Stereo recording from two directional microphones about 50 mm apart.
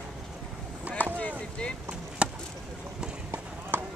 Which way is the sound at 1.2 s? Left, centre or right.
Left.